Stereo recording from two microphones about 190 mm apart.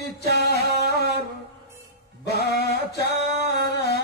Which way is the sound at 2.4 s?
60° left (ahead or behind).